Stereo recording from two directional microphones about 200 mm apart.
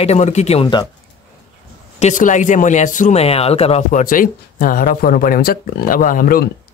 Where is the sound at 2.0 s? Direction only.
40° left (ahead or behind).